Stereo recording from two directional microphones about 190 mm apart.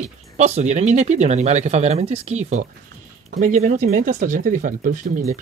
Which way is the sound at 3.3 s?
40° right (ahead or behind).